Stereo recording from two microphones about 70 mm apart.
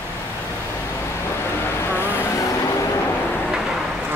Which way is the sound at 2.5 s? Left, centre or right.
Left.